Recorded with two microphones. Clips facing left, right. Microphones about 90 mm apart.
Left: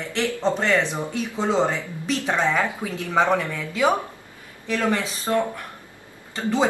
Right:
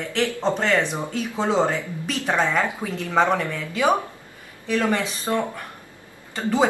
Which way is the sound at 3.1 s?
Centre (ahead or behind).